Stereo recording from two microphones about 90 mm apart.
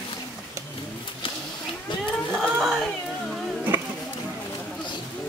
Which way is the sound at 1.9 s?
55° left (ahead or behind).